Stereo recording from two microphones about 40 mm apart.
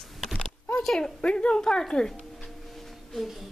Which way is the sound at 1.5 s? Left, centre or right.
Centre.